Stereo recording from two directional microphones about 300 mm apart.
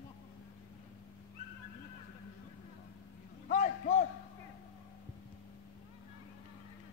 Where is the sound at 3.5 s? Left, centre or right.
Left.